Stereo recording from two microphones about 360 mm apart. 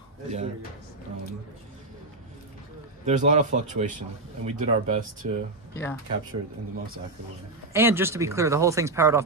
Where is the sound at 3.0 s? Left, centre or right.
Centre.